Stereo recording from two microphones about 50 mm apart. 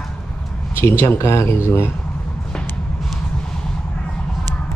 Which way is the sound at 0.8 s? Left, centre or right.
Left.